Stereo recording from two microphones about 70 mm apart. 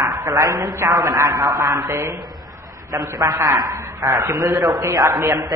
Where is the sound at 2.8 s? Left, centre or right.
Right.